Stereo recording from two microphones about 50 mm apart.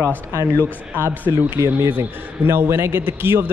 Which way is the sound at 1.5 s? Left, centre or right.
Right.